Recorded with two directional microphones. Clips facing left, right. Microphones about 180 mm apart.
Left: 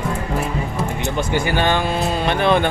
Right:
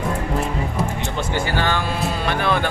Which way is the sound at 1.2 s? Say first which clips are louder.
Left 3 dB; 15° left (ahead or behind).